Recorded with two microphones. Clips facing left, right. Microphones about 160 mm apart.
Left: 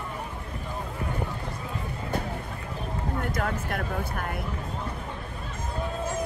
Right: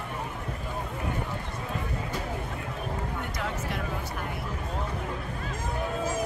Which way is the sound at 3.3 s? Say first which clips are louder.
Left 3 dB; 55° left (ahead or behind).